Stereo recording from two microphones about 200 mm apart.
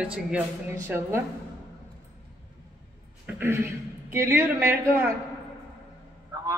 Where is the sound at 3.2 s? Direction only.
10° right (ahead or behind).